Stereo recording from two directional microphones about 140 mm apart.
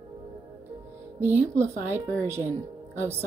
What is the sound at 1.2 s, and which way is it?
A woman's voice, 15° right (ahead or behind).